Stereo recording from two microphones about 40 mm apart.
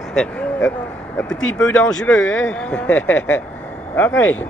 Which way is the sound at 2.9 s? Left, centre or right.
Left.